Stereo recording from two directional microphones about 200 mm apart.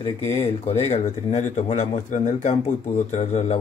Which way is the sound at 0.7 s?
30° left (ahead or behind).